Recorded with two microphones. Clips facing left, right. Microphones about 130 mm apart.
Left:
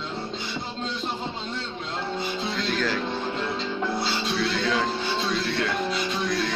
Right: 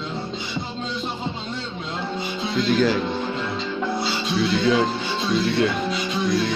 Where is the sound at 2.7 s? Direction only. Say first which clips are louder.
Right 9 dB; 15° right (ahead or behind).